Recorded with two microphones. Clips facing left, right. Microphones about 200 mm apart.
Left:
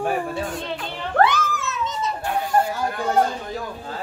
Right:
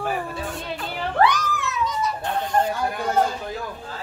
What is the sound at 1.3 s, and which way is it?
Children playing, 25° left (ahead or behind).